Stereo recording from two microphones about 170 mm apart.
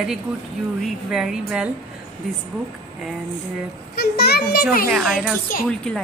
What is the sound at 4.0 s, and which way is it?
Speech, 70° left (ahead or behind).